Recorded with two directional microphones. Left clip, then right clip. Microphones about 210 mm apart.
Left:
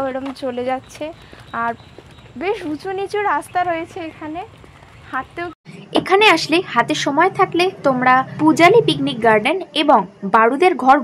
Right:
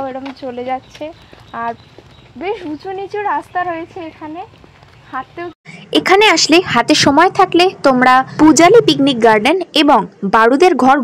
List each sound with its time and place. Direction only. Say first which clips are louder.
0.4 s speech: right 1 dB; 15° left (ahead or behind)
5.7 s speech: right 5 dB; 30° right (ahead or behind)